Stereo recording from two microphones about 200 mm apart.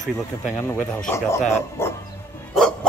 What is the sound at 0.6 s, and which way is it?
Speech, 10° left (ahead or behind).